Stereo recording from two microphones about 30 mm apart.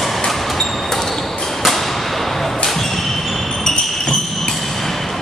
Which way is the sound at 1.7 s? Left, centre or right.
Centre.